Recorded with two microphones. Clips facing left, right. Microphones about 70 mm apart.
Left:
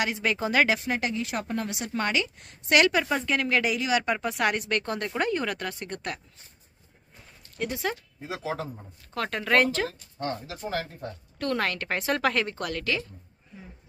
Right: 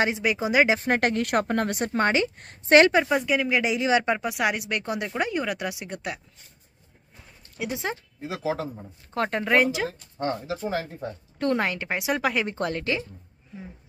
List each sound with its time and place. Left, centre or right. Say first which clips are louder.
0.2 s speech: right 2 dB; centre
0.7 s speech: right 5 dB; right
3.2 s speech: right 2 dB; centre
3.7 s speech: right 3 dB; right
4.2 s speech: right 1 dB; centre
7.7 s speech: right 1 dB; right
8.2 s speech: right 6 dB; centre
9.1 s speech: right 2 dB; right
9.6 s speech: even; centre
9.8 s speech: right 3 dB; right; by 12.4 s centre
12.4 s speech: right 3 dB; right